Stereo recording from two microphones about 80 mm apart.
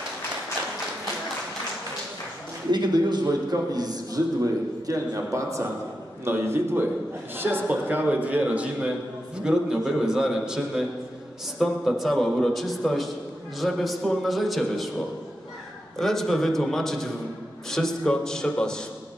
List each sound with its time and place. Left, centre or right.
2.7 s a man's voice: right; by 14.9 s centre
16.0 s a man's voice: centre